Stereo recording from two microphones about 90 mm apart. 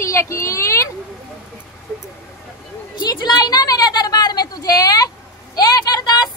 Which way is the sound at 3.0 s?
50° left (ahead or behind).